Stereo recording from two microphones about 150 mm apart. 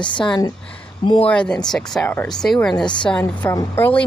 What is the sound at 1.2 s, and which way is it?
Speech, 5° left (ahead or behind).